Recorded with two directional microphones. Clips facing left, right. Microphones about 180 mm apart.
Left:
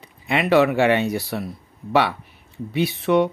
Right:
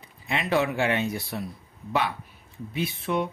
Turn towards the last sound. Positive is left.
turn(degrees=75)  # may be behind; listen again after turning